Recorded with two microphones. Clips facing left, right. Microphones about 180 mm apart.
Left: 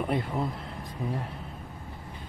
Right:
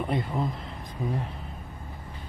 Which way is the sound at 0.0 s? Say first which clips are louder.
Even; 5° left (ahead or behind).